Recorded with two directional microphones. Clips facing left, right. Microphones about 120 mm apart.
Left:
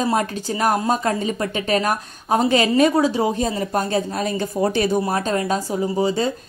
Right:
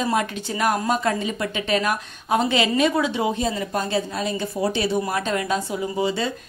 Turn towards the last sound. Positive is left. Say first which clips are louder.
# left 3 dB
turn(degrees=40)  # may be behind; listen again after turning